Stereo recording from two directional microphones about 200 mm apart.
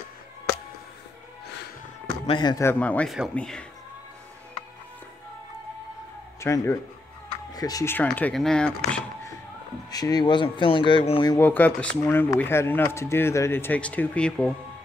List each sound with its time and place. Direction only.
2.2 s speech: 25° left (ahead or behind); by 3.6 s 5° left (ahead or behind)
6.4 s speech: 15° left (ahead or behind)
9.8 s speech: 20° left (ahead or behind)
11.3 s speech: 10° left (ahead or behind)